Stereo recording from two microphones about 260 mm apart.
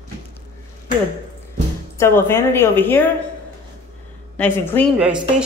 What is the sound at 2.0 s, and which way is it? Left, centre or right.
A woman's voice, centre.